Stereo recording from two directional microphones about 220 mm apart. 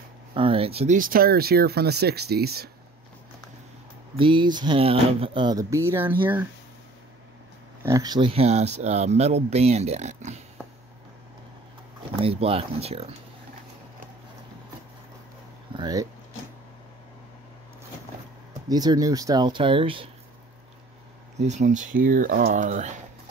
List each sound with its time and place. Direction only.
0.3 s speech: 25° right (ahead or behind); by 2.7 s 45° right (ahead or behind)
4.2 s speech: 20° right (ahead or behind)
7.8 s speech: 15° right (ahead or behind); by 10.4 s 30° right (ahead or behind)
12.2 s speech: 25° right (ahead or behind)
15.7 s speech: 20° right (ahead or behind)
18.7 s speech: 15° right (ahead or behind)
21.4 s speech: 30° right (ahead or behind)